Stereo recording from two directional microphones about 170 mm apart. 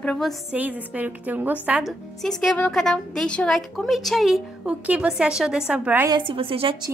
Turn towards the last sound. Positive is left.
turn(degrees=-30)  # may be behind; listen again after turning